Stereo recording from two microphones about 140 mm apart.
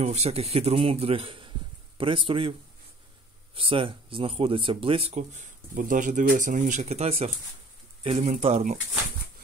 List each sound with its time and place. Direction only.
0.0 s speech: 50° right (ahead or behind)
3.5 s speech: 40° right (ahead or behind)